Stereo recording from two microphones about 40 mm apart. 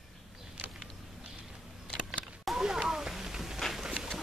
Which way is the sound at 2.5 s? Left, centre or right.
Centre.